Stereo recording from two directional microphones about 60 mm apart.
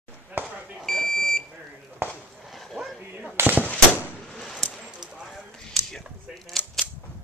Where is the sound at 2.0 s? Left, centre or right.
Right.